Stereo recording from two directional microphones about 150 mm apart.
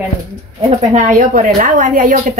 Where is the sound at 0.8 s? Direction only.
50° right (ahead or behind).